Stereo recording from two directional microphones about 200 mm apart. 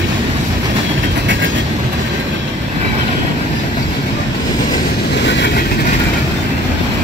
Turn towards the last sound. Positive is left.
turn(degrees=60)  # may be behind; listen again after turning